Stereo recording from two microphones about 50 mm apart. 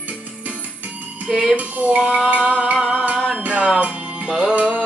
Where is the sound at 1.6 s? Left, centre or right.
Right.